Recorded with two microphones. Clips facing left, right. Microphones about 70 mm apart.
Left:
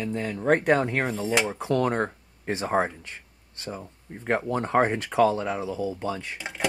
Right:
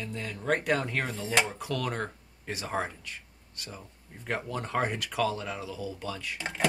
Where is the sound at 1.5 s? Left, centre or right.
Left.